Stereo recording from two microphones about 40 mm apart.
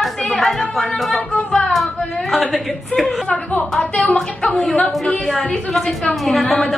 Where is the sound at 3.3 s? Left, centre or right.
Left.